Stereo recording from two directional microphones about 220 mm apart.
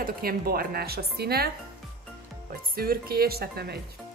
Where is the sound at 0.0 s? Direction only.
45° right (ahead or behind).